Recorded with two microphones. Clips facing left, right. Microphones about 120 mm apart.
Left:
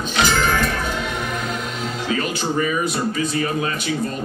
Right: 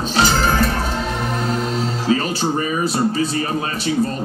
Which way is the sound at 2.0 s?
35° right (ahead or behind).